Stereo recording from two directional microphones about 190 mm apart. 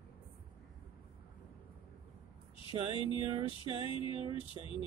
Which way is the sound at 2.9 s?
30° left (ahead or behind).